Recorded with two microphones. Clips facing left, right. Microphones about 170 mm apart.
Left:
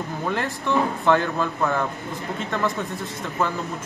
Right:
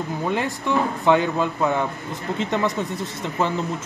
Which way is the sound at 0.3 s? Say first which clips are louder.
Right 1 dB; 15° right (ahead or behind).